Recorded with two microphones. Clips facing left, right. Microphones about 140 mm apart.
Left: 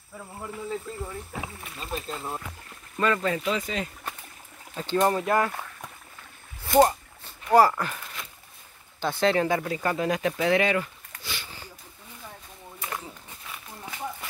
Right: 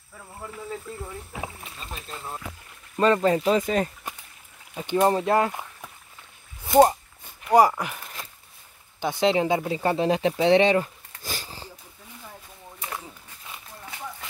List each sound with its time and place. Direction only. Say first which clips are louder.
3.0 s speech: right 5 dB; 35° right (ahead or behind)
4.7 s speech: right 2 dB; 15° right (ahead or behind)
5.1 s speech: right 2 dB; 25° right (ahead or behind)
6.8 s a sound: right 3 dB; 20° right (ahead or behind)
7.4 s speech: right 1 dB; 15° right (ahead or behind)
9.0 s speech: right 1 dB; 20° right (ahead or behind); by 11.7 s 35° right (ahead or behind)
12.8 s a sound: even; 5° right (ahead or behind)